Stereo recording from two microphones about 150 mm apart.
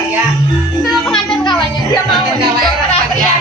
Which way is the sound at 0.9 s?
Centre (ahead or behind).